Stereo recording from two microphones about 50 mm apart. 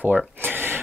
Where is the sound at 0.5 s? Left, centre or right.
Right.